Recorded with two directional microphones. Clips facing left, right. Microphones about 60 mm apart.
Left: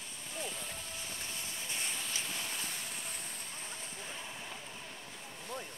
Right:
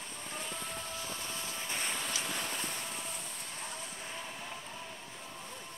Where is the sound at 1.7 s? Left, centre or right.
Right.